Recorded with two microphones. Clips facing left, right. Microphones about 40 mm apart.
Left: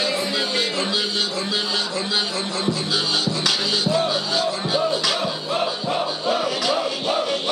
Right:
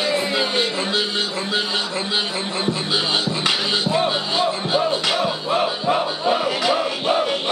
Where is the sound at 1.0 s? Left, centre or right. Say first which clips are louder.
Right 1 dB; centre.